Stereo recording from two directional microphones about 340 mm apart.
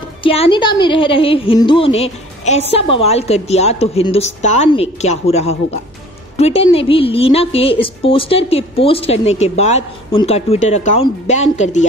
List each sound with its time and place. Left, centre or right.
0.2 s a woman's voice: centre